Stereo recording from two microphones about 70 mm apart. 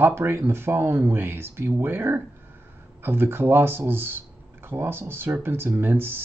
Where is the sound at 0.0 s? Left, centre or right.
Right.